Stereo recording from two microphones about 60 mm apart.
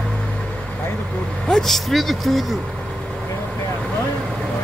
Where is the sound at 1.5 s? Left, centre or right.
Centre.